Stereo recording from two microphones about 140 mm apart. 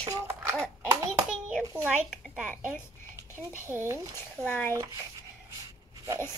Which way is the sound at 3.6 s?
20° right (ahead or behind).